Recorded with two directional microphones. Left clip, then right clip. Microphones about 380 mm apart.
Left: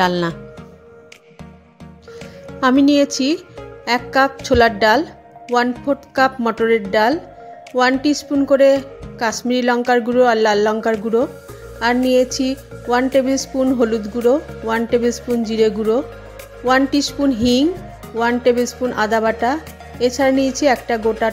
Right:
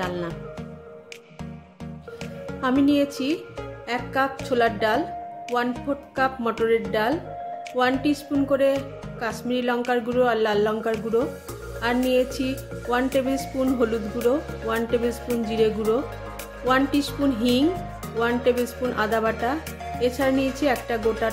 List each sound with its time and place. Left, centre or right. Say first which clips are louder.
0.0 s speech: left 12 dB; left
2.6 s speech: left 8 dB; left